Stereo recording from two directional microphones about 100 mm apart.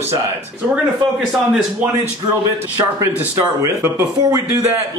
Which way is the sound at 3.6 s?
25° right (ahead or behind).